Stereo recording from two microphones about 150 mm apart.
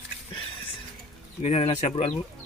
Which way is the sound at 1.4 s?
40° left (ahead or behind).